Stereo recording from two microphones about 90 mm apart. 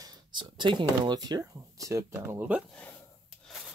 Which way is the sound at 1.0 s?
50° right (ahead or behind).